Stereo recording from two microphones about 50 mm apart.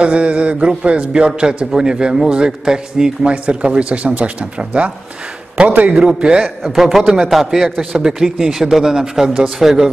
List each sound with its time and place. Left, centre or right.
0.0 s a man's voice: right
3.6 s a man's voice: right
6.4 s a man's voice: centre